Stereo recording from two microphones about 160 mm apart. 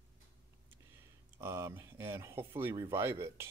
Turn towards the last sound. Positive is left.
turn(degrees=-15)  # may be behind; listen again after turning